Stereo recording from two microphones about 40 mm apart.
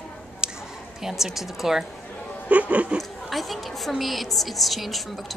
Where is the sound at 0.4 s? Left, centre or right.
Right.